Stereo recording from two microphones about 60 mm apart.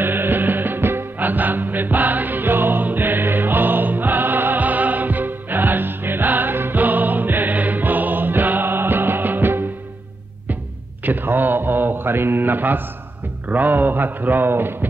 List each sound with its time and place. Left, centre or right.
0.0 s music: right
11.1 s mantra: right
13.5 s a man's voice: right